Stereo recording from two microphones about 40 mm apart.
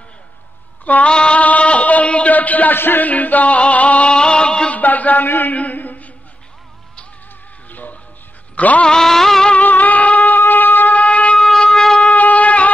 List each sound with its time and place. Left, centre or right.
1.0 s a man's voice: left
2.7 s speech: left
3.1 s music: left
4.1 s music: left
4.7 s a sound: left
5.3 s a man's voice: left
5.6 s a sound: left
7.7 s music: left
8.5 s a sound: left
8.8 s music: centre
9.6 s a sound: left
11.0 s shofar: left
11.3 s wind instrument: centre
12.1 s shofar: left